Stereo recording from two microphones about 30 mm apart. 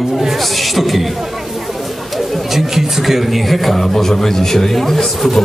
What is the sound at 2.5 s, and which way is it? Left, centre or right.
A man's voice, centre.